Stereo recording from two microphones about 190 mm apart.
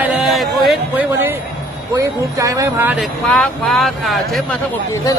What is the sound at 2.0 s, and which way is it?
Speech, 15° right (ahead or behind).